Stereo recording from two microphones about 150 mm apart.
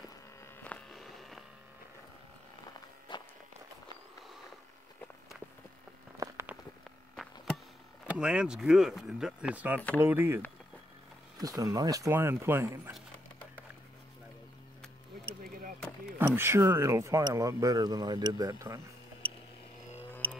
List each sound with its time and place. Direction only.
0.7 s a sound: 5° left (ahead or behind)
3.1 s walk: 30° left (ahead or behind)
6.1 s a sound: 20° right (ahead or behind)
8.1 s speech: 5° right (ahead or behind)
11.4 s speech: 25° right (ahead or behind)
16.2 s speech: 15° right (ahead or behind)